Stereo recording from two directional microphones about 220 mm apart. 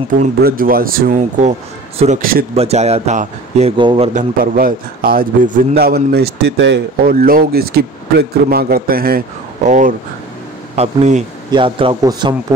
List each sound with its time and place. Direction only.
0.2 s a man's voice: 40° right (ahead or behind)
11.5 s speech: 20° right (ahead or behind)